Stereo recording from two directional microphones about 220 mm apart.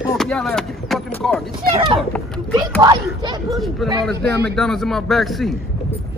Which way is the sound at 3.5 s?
Centre (ahead or behind).